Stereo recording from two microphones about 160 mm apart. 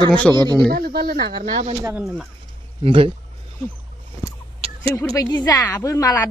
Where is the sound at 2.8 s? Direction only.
35° right (ahead or behind).